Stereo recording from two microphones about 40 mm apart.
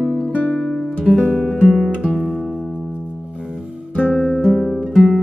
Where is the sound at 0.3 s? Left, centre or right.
Left.